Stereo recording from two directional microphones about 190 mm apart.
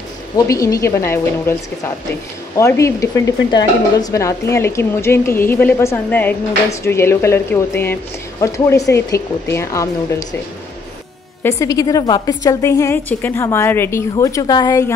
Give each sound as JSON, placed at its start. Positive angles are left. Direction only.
{"t": 0.5, "sound": "speech", "side_deg": 15}
{"t": 11.4, "sound": "speech", "side_deg": 15}